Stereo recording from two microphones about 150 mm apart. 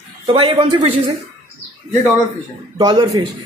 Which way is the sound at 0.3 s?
35° right (ahead or behind).